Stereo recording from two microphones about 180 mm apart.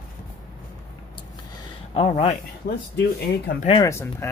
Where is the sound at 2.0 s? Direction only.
35° left (ahead or behind).